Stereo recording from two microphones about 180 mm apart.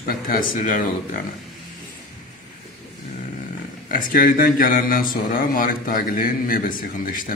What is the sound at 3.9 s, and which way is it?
A man's voice, 50° left (ahead or behind).